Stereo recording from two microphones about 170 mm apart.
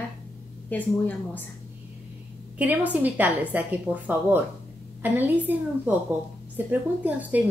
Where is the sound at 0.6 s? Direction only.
10° left (ahead or behind).